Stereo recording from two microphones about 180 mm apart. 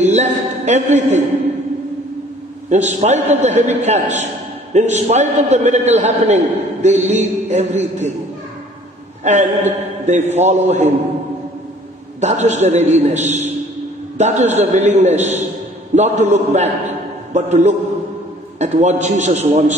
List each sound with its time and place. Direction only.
0.0 s a man's voice: 40° right (ahead or behind)
2.7 s a man's voice: 40° right (ahead or behind)
9.2 s a man's voice: 40° right (ahead or behind)
12.2 s a man's voice: 40° right (ahead or behind)